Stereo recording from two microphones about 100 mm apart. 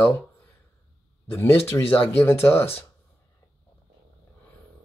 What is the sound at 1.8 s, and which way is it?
Speech, 70° left (ahead or behind).